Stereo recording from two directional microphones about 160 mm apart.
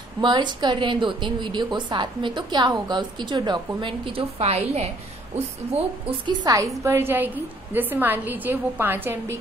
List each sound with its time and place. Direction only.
0.2 s a woman's voice: 30° right (ahead or behind)
6.0 s a woman's voice: 25° right (ahead or behind)